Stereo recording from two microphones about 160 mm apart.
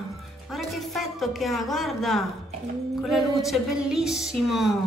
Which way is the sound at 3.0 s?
Centre (ahead or behind).